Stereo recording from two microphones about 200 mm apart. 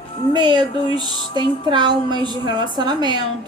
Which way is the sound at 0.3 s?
20° right (ahead or behind).